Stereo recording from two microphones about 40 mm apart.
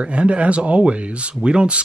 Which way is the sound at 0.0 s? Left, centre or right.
Right.